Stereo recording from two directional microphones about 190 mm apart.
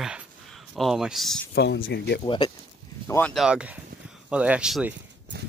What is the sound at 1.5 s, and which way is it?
Speech, 65° left (ahead or behind).